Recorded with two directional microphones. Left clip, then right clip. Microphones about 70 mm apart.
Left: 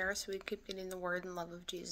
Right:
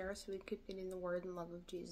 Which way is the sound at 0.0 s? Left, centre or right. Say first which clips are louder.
Left 7 dB; right.